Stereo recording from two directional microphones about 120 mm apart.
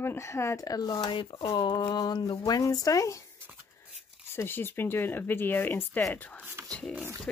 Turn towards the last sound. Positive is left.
turn(degrees=10)  # may be behind; listen again after turning